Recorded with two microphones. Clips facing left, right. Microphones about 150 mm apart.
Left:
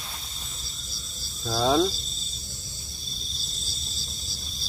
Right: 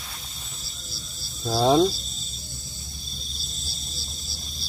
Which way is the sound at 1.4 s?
20° right (ahead or behind).